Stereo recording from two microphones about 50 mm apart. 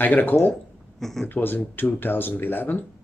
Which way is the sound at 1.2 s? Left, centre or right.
Left.